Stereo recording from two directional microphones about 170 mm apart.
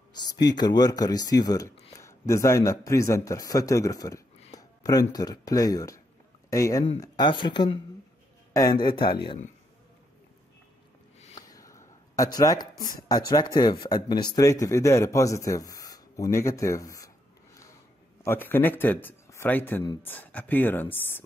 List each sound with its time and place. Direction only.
0.1 s speech: 25° left (ahead or behind)
9.1 s speech: 30° left (ahead or behind)
11.1 s a sound: 40° left (ahead or behind)
11.5 s a sound: 20° left (ahead or behind)
12.2 s speech: 20° left (ahead or behind)
18.2 s a man's voice: 15° left (ahead or behind)